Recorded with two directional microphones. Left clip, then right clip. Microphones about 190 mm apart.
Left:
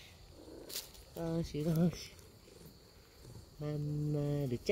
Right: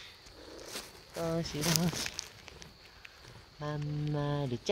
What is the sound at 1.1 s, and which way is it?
Speech, 5° left (ahead or behind).